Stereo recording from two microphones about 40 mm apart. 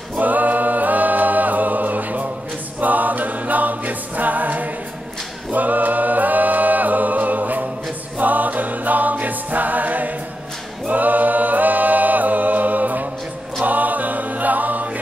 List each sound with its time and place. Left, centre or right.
0.2 s a capella: right
8.2 s music: right
10.9 s a capella: right
13.6 s music: right